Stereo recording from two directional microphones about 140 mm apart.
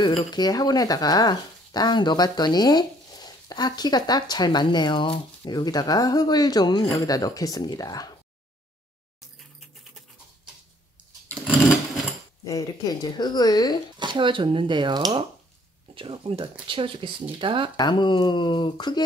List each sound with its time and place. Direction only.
0.3 s speech: 30° left (ahead or behind)
12.4 s speech: 25° left (ahead or behind)
13.9 s speech: 35° right (ahead or behind)
17.7 s speech: 35° left (ahead or behind)